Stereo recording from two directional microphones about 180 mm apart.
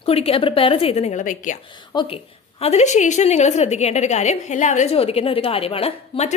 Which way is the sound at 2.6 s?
40° left (ahead or behind).